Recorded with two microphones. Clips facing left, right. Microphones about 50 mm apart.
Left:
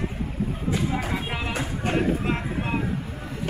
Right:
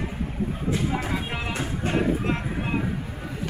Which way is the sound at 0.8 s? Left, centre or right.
Centre.